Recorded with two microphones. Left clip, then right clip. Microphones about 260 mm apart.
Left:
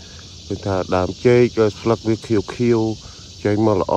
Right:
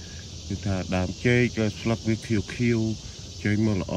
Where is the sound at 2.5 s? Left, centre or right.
Centre.